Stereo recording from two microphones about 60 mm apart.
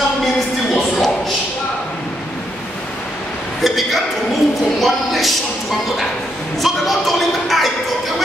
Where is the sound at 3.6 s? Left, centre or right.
Centre.